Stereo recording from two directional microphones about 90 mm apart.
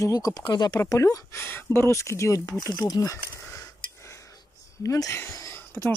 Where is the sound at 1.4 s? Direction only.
25° left (ahead or behind).